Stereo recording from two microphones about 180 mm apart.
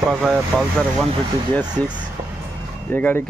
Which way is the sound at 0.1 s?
Centre (ahead or behind).